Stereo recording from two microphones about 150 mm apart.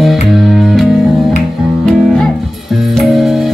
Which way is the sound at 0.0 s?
Centre (ahead or behind).